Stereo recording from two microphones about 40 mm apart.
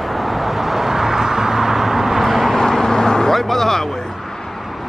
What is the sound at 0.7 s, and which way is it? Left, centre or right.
Vehicle, centre.